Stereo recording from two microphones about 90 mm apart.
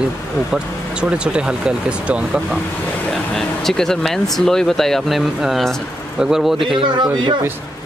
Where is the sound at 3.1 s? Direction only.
5° left (ahead or behind).